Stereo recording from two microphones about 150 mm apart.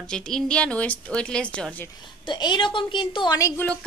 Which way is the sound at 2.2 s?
30° left (ahead or behind).